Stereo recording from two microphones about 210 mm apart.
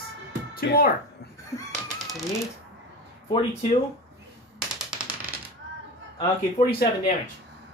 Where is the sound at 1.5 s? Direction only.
15° left (ahead or behind).